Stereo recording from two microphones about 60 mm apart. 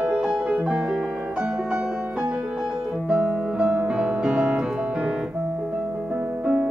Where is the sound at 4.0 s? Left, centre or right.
Centre.